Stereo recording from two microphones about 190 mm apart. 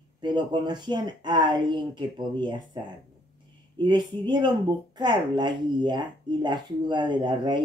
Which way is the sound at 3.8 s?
25° right (ahead or behind).